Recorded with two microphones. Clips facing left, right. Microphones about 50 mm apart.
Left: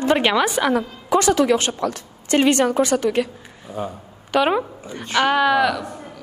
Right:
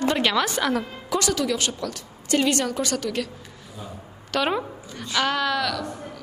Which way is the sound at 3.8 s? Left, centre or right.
Left.